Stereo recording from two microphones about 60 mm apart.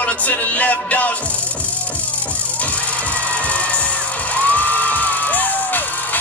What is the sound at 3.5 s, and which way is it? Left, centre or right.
Music, left.